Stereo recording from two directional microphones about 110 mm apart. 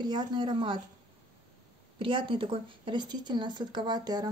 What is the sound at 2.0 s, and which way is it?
A woman's voice, 50° right (ahead or behind).